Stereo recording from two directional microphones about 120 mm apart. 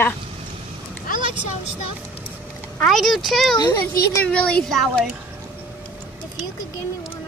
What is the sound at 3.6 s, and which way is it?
Speech, 25° left (ahead or behind).